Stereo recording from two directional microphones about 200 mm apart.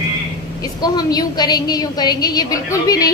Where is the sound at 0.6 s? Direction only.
20° left (ahead or behind).